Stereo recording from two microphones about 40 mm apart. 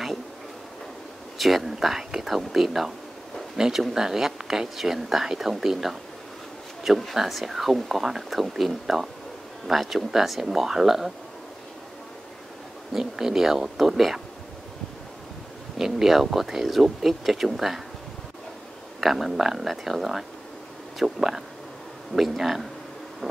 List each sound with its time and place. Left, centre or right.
1.4 s speech: centre
7.2 s speech: centre
12.9 s speech: centre
15.8 s speech: centre
18.9 s speech: centre
22.4 s speech: centre